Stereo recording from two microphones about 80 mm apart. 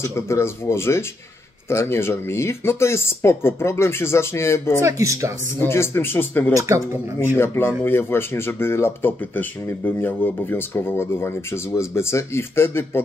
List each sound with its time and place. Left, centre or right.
0.0 s speech: left
4.8 s speech: right
5.6 s speech: left